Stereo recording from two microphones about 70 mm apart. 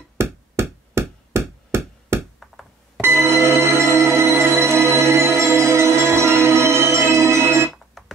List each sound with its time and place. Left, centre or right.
0.2 s hammer: right
2.4 s music: centre
3.0 s music: right
8.0 s chink: centre